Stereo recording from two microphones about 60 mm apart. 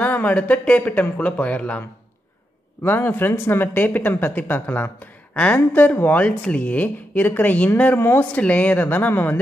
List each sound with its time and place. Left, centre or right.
0.0 s speech: left
5.3 s a woman's voice: left